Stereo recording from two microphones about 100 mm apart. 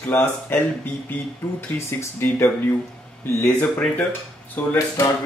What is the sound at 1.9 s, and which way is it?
Speech, 25° left (ahead or behind).